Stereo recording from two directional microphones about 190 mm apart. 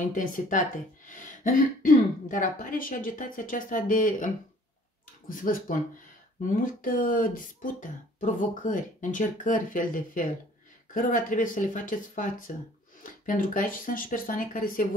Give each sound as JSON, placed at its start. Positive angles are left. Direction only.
{"t": 0.1, "sound": "speech", "side_deg": 45}
{"t": 5.3, "sound": "speech", "side_deg": 45}